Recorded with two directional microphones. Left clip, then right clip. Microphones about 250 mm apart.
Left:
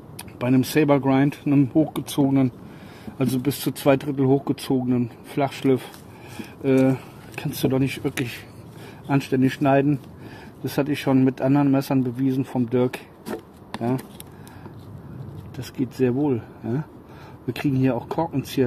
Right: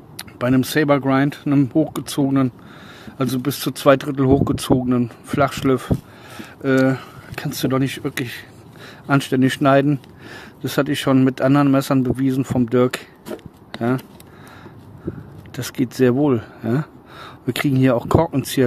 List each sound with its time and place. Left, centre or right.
0.2 s speech: right
8.0 s speech: centre
9.0 s speech: right
15.5 s speech: right